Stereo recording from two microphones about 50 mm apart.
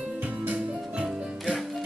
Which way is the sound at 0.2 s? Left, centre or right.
Right.